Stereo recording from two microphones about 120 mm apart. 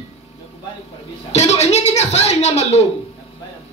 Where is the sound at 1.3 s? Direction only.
65° left (ahead or behind).